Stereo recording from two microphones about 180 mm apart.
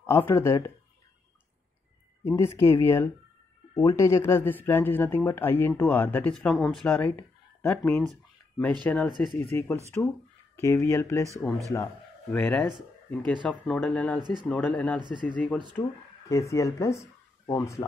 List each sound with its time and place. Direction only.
0.0 s speech: 15° left (ahead or behind)
2.2 s speech: 15° left (ahead or behind)
8.1 s a sound: 5° left (ahead or behind)
8.8 s a man's voice: 5° left (ahead or behind)
12.4 s speech: centre (ahead or behind)
15.0 s speech: 25° right (ahead or behind)
15.2 s speech: 10° left (ahead or behind)